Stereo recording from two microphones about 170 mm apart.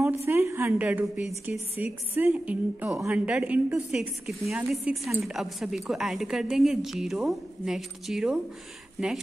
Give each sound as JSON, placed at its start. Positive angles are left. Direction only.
{"t": 0.3, "sound": "a woman's voice", "side_deg": -15}